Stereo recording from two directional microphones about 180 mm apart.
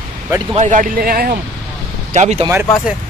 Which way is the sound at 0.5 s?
45° right (ahead or behind).